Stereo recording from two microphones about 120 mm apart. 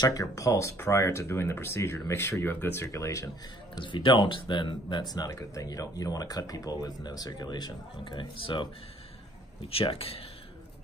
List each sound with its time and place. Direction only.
0.0 s speech: 30° left (ahead or behind)
3.7 s speech: 40° left (ahead or behind)
9.7 s speech: 55° left (ahead or behind)